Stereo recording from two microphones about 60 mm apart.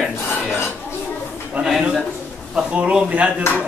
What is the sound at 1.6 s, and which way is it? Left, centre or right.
A man's voice, right.